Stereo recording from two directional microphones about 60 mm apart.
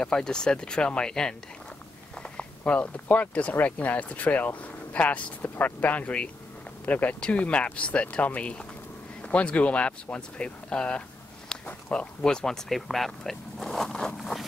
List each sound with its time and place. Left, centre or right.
0.0 s speech: centre